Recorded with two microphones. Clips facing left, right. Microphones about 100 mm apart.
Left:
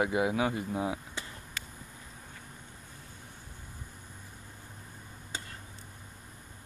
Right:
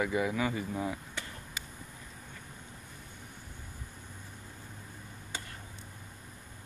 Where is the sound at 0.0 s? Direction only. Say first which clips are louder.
Left 2 dB; 15° left (ahead or behind).